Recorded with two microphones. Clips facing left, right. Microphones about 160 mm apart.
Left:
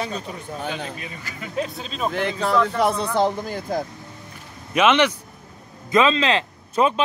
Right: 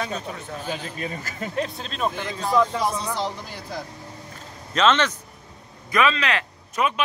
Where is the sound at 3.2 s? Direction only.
50° left (ahead or behind).